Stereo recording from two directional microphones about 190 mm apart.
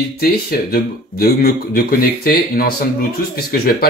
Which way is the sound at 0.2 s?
50° left (ahead or behind).